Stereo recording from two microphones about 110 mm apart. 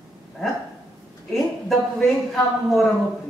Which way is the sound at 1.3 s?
Centre (ahead or behind).